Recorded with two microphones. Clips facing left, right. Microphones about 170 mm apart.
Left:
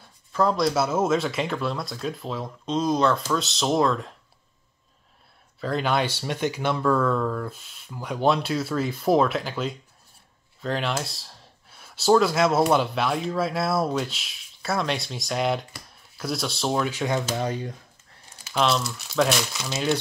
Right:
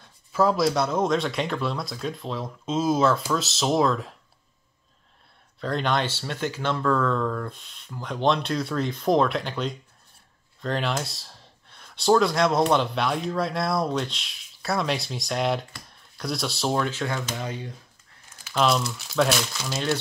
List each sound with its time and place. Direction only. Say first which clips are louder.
0.3 s speech: right 1 dB; 5° right (ahead or behind)
5.6 s speech: left 1 dB; 5° left (ahead or behind)
16.9 s speech: left 4 dB; 15° left (ahead or behind)
17.3 s speech: left 5 dB; 40° left (ahead or behind)
18.6 s speech: right 1 dB; centre (ahead or behind)